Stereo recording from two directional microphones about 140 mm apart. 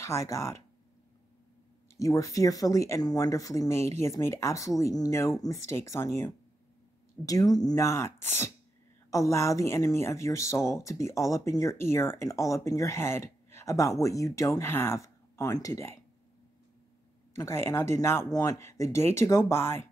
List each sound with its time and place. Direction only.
0.0 s speech: 20° left (ahead or behind)
2.0 s speech: 25° left (ahead or behind)
7.2 s speech: 25° left (ahead or behind)
17.4 s speech: 20° left (ahead or behind)